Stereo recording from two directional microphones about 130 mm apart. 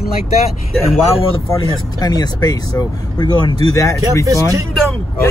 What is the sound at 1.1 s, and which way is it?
Speech, 45° left (ahead or behind).